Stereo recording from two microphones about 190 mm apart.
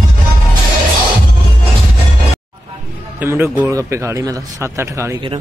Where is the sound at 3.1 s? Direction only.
10° right (ahead or behind).